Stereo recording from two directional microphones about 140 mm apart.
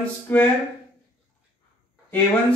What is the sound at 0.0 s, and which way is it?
Speech, 10° left (ahead or behind).